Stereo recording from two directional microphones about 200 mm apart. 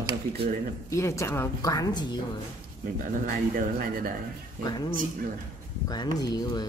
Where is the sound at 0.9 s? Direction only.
15° left (ahead or behind).